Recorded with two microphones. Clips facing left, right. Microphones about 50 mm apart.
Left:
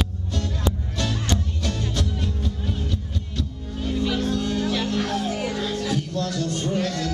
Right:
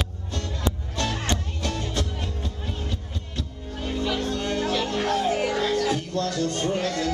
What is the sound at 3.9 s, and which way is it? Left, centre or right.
Music, centre.